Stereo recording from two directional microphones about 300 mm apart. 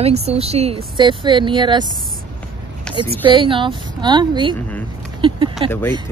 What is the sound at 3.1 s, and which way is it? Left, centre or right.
A woman's voice, centre.